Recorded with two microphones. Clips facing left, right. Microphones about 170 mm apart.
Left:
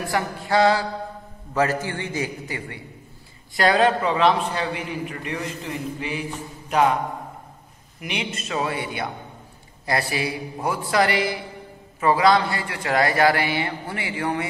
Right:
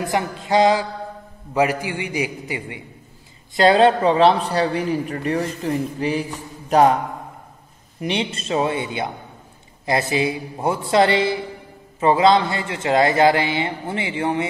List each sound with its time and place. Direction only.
0.0 s a man's voice: 20° right (ahead or behind); by 6.2 s 35° right (ahead or behind)
8.0 s a man's voice: 30° right (ahead or behind)